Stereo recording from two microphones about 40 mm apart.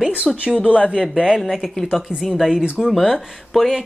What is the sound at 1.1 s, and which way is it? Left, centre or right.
Speech, centre.